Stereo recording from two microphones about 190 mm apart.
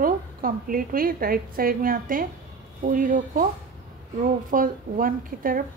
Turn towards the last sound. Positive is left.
turn(degrees=-45)  # may be behind; listen again after turning